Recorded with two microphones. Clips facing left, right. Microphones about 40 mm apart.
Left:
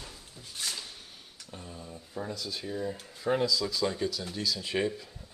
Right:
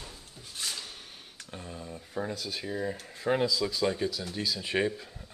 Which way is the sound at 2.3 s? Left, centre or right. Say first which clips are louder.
Right 1 dB; right.